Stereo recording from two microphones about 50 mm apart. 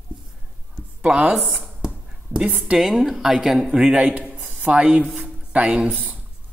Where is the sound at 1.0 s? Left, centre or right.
Right.